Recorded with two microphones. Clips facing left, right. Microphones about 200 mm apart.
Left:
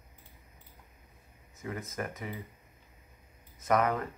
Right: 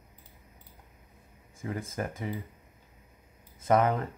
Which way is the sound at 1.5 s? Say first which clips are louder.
Right 3 dB; 30° right (ahead or behind).